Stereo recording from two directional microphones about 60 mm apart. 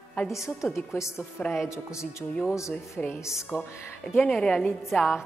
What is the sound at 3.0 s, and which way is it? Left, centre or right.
Speech, centre.